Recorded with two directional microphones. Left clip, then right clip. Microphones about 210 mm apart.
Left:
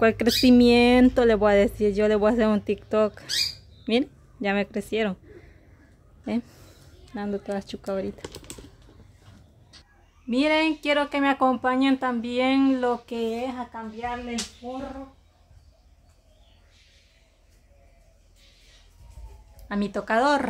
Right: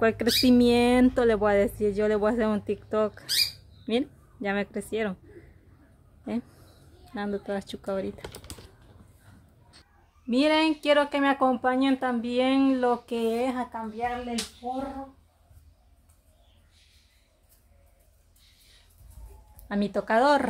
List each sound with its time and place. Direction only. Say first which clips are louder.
0.0 s a woman's voice: left 3 dB; 15° left (ahead or behind)
7.1 s speech: left 1 dB; 5° left (ahead or behind)
10.3 s speech: left 1 dB; 5° right (ahead or behind)
13.3 s speech: right 2 dB; 30° right (ahead or behind)
19.7 s speech: even; 5° right (ahead or behind)